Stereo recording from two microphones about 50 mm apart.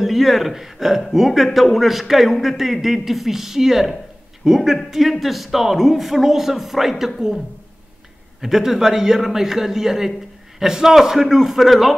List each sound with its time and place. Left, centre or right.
0.0 s a man's voice: centre
8.4 s a man's voice: centre